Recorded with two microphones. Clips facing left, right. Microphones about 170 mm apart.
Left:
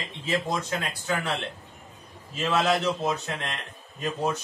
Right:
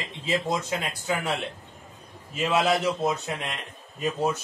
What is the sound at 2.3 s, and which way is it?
Speech, 10° right (ahead or behind).